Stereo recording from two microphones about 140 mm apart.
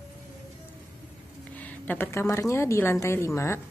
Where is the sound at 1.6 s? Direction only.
15° left (ahead or behind).